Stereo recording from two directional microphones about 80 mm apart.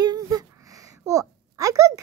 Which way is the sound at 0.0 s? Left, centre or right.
Right.